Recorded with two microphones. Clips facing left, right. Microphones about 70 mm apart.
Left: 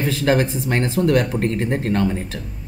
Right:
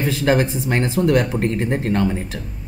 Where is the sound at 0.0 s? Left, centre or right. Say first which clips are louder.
Right 1 dB; centre.